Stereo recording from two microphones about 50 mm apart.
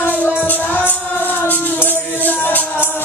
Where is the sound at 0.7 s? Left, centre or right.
Left.